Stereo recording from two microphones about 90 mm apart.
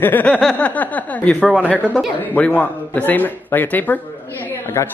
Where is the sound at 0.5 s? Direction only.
20° left (ahead or behind).